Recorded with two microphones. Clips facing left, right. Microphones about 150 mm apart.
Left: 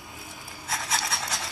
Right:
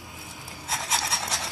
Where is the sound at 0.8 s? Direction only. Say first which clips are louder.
Right 1 dB; centre (ahead or behind).